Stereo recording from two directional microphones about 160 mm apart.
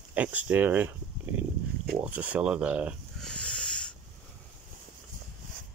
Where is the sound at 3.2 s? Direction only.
5° left (ahead or behind).